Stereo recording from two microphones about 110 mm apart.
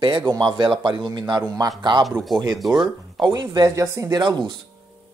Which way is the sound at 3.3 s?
35° right (ahead or behind).